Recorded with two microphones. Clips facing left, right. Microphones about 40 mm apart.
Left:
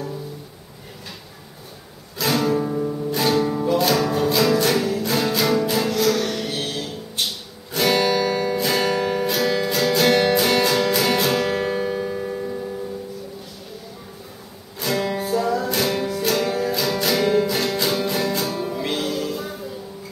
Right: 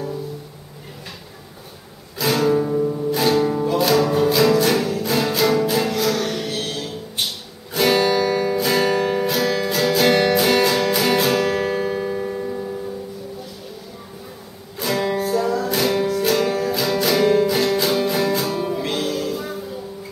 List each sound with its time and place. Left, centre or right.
2.1 s music: centre
14.8 s music: centre